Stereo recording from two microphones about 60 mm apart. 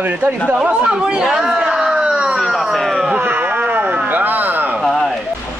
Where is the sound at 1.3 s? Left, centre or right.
Centre.